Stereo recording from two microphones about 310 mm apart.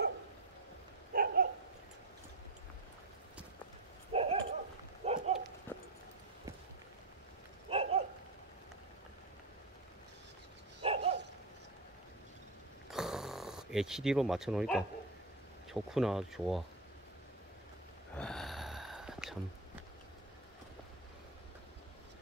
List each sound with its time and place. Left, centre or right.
1.1 s dog: right
4.1 s dog: centre
5.0 s a sound: right
5.7 s a sound: centre
7.7 s dog: centre
10.8 s dog: centre
12.9 s snoring: centre
15.7 s speech: centre
18.1 s a sound: centre